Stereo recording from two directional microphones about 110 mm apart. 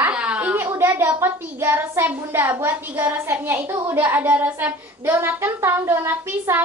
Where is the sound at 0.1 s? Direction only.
10° right (ahead or behind).